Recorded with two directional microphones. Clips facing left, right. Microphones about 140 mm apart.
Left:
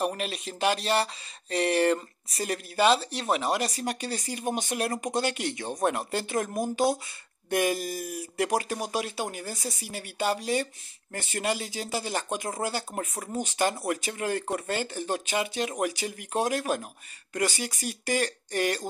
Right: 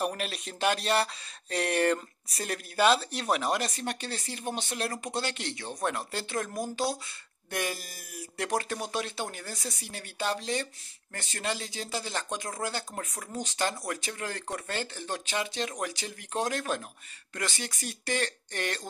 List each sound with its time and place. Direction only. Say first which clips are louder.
0.0 s speech: left 2 dB; centre (ahead or behind)